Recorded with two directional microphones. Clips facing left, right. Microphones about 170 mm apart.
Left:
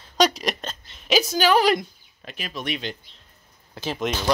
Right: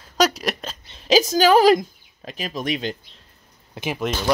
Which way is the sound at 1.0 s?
90° right.